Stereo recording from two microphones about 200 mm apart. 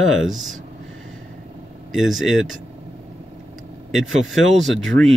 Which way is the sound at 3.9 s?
Centre (ahead or behind).